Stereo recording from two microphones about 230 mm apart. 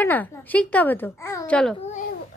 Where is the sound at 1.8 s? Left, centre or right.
Left.